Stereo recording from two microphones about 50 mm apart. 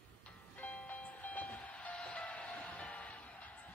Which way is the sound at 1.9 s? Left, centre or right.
Left.